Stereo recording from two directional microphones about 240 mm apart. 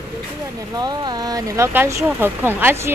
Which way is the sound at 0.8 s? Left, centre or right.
Centre.